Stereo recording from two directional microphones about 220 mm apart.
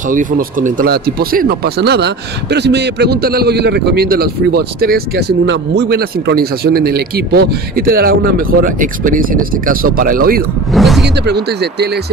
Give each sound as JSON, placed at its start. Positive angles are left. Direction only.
{"t": 0.1, "sound": "speech", "side_deg": -35}
{"t": 10.7, "sound": "a sound", "side_deg": 0}
{"t": 11.2, "sound": "speech", "side_deg": -50}